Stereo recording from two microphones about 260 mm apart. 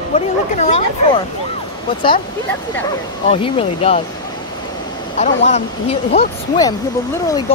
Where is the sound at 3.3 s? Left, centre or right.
Left.